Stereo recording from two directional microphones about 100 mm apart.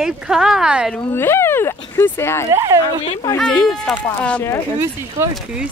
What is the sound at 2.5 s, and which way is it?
Speech, 35° right (ahead or behind).